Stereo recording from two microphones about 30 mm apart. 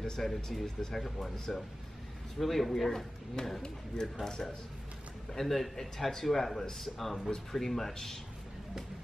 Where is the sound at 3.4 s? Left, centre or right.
Left.